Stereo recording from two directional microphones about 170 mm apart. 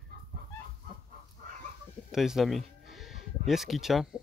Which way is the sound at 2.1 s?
Centre (ahead or behind).